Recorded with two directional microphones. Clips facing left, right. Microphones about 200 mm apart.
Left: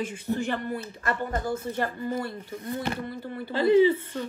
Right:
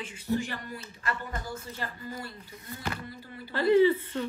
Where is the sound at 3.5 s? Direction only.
20° left (ahead or behind).